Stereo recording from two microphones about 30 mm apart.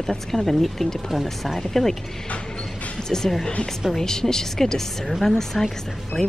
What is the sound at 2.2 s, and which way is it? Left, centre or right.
Music, left.